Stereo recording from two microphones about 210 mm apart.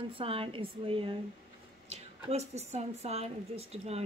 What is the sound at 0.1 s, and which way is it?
A woman's voice, 25° right (ahead or behind).